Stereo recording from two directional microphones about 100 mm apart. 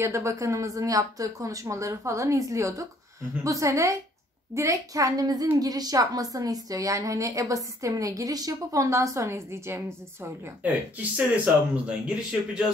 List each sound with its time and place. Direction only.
0.0 s a woman's voice: 30° right (ahead or behind)
10.4 s speech: 15° right (ahead or behind)